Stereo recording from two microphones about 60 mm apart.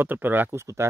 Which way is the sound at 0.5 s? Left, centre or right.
Right.